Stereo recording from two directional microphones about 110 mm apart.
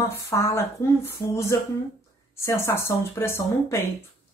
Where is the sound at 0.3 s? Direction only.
25° left (ahead or behind).